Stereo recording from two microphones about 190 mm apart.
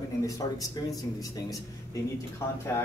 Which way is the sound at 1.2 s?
20° left (ahead or behind).